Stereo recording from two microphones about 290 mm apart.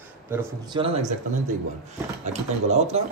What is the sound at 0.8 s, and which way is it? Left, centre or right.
Speech, right.